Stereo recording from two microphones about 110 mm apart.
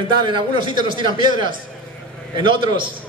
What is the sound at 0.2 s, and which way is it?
Speech, 45° right (ahead or behind).